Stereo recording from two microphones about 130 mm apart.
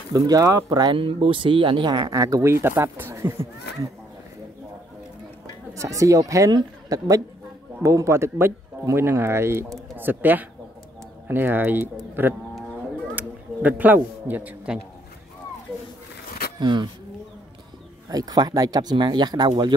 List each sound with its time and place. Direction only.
0.1 s speech: 25° right (ahead or behind)
0.9 s speech: 45° right (ahead or behind); by 3.3 s 20° right (ahead or behind)
5.8 s a man's voice: 25° right (ahead or behind)
16.5 s speech: 35° right (ahead or behind)
18.1 s speech: 30° right (ahead or behind)